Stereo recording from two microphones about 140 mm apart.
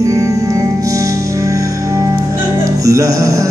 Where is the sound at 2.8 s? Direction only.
20° right (ahead or behind).